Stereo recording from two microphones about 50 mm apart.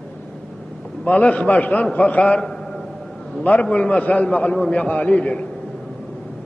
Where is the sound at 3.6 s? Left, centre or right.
Left.